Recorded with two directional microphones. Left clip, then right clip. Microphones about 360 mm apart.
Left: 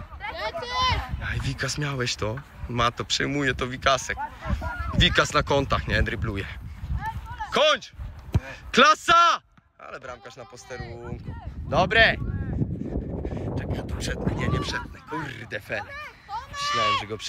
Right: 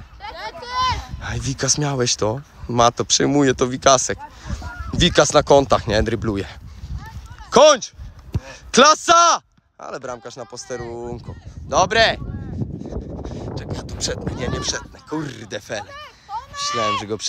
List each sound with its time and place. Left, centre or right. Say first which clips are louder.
0.5 s a sound: right 4 dB; right
1.2 s speech: right 6 dB; centre
10.9 s speech: right 9 dB; right
11.7 s speech: right 3 dB; centre
13.2 s speech: right 1 dB; centre
16.3 s a sound: right 5 dB; right
16.6 s speech: right 2 dB; right
17.0 s speech: right 7 dB; centre